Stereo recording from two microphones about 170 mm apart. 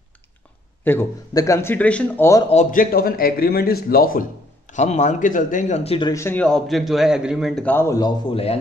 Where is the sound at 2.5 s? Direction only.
50° left (ahead or behind).